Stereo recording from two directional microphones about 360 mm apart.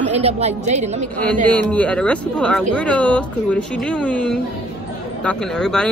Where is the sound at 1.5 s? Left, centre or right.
Centre.